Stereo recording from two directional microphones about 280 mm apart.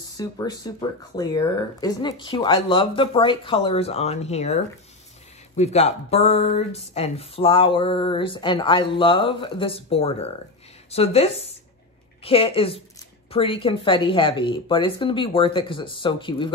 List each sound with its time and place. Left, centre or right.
0.2 s speech: centre
5.6 s speech: left